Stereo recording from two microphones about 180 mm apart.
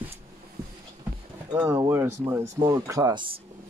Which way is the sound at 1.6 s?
15° right (ahead or behind).